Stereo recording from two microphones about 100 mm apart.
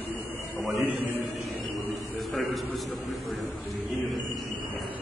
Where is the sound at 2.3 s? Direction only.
Centre (ahead or behind).